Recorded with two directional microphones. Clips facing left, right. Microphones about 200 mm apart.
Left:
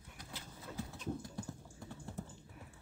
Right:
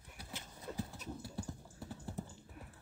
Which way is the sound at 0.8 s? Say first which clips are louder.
Left 4 dB; 5° right (ahead or behind).